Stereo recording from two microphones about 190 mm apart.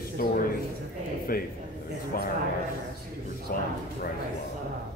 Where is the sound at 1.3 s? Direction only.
50° left (ahead or behind).